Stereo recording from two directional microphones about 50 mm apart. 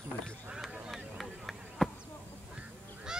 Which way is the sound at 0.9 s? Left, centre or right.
Centre.